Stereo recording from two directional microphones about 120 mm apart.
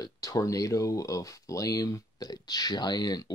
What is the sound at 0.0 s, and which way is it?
Speech, 30° left (ahead or behind).